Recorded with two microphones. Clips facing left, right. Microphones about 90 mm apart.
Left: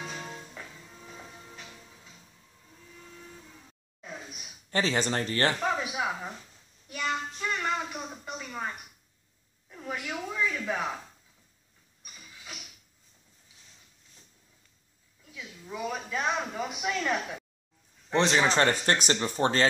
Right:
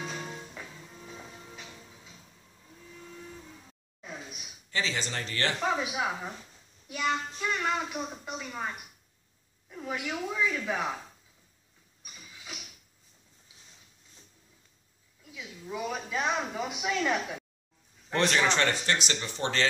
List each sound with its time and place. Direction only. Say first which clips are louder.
0.0 s music: right 1 dB; centre (ahead or behind)
4.6 s speech: left 5 dB; 45° left (ahead or behind)
5.6 s a woman's voice: even; 5° right (ahead or behind)
12.0 s ratchet: even; 5° right (ahead or behind)
15.2 s speech: right 2 dB; 5° right (ahead or behind)
18.1 s speech: left 2 dB; 25° left (ahead or behind); by 19.7 s 40° left (ahead or behind)